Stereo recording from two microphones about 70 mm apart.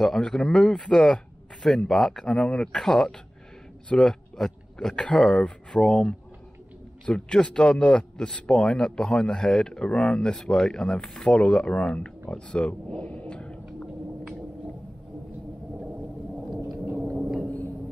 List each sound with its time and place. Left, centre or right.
0.0 s speech: centre
17.2 s gong: centre